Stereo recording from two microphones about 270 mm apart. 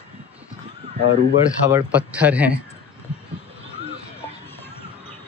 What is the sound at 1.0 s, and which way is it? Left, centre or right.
Speech, left.